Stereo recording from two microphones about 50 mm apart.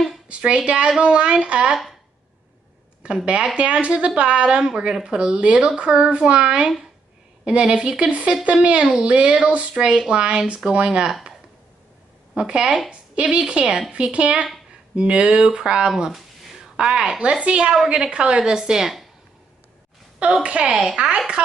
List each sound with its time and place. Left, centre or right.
0.3 s speech: right
3.0 s a woman's voice: right
12.4 s a woman's voice: centre
12.9 s a sound: right
13.4 s a woman's voice: right
20.4 s speech: right